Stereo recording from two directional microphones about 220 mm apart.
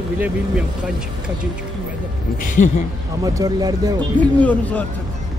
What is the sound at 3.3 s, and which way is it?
Speech, 15° right (ahead or behind).